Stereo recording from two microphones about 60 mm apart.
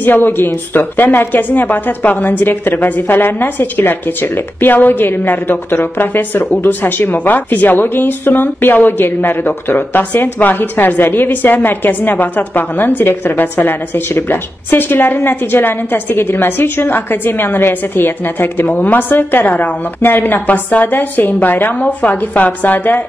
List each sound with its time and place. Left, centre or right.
0.0 s a woman's voice: left